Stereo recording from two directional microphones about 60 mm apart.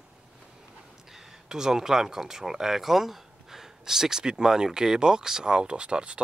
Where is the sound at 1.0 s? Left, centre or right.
Centre.